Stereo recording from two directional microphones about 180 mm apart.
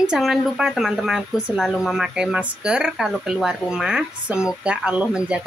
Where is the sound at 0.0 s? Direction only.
5° right (ahead or behind).